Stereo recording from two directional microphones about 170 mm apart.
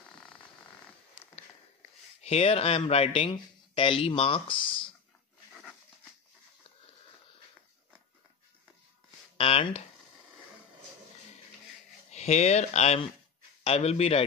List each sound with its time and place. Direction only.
2.2 s speech: 35° left (ahead or behind)
9.4 s speech: 35° left (ahead or behind)
12.1 s speech: 40° left (ahead or behind)